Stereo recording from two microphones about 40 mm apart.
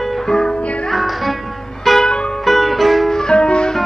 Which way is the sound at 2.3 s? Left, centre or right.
Centre.